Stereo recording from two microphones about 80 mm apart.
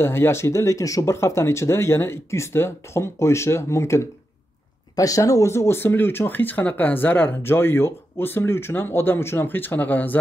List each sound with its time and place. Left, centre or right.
0.0 s speech: left